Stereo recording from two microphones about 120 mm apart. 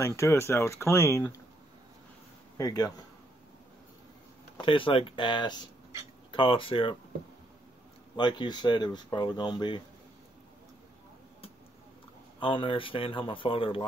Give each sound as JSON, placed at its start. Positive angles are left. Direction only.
{"t": 0.0, "sound": "speech", "side_deg": 25}
{"t": 2.5, "sound": "speech", "side_deg": 30}
{"t": 4.6, "sound": "speech", "side_deg": 45}
{"t": 8.2, "sound": "speech", "side_deg": 40}
{"t": 12.4, "sound": "speech", "side_deg": 45}